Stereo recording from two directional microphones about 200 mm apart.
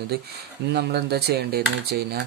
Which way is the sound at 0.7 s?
55° right (ahead or behind).